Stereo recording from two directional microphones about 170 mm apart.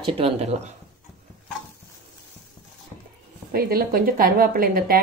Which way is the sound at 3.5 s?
60° right (ahead or behind).